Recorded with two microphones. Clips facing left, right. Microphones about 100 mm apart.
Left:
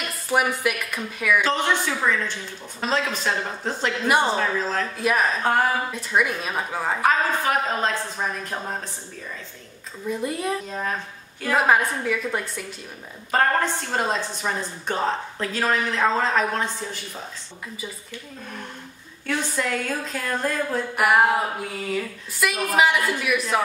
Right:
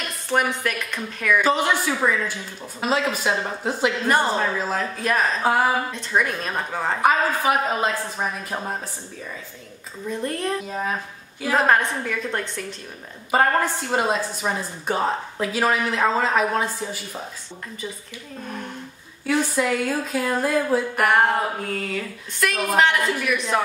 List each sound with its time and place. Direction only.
0.3 s speech: 5° left (ahead or behind)
1.4 s speech: 10° right (ahead or behind)
5.0 s speech: 5° left (ahead or behind)
5.4 s speech: 5° right (ahead or behind)
5.9 s speech: 5° left (ahead or behind)
7.1 s speech: 10° right (ahead or behind)
10.0 s speech: 5° left (ahead or behind)
10.7 s speech: 5° right (ahead or behind)
11.5 s speech: 5° left (ahead or behind)
13.3 s speech: 10° right (ahead or behind)
19.2 s speech: 5° right (ahead or behind)